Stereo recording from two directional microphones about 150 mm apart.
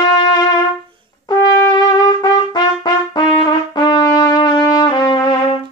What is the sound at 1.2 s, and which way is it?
Trumpet, 25° left (ahead or behind).